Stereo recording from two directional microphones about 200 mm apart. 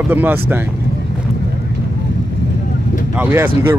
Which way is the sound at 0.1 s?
10° right (ahead or behind).